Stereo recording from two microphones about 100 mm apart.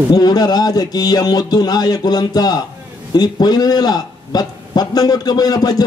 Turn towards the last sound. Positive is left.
turn(degrees=40)  # may be behind; listen again after turning